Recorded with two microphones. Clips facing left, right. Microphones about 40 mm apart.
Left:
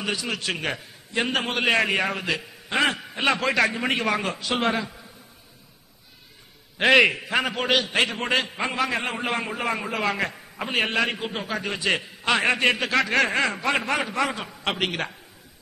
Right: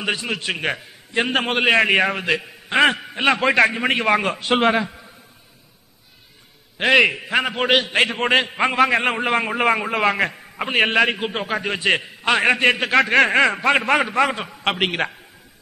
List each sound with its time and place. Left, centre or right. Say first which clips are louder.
0.0 s a man's voice: right 4 dB; right
3.0 s a man's voice: right 5 dB; right
6.8 s a man's voice: right 2 dB; centre
7.2 s a man's voice: right 4 dB; centre